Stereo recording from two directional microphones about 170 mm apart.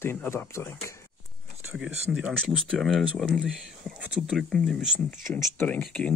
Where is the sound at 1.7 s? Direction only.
10° right (ahead or behind).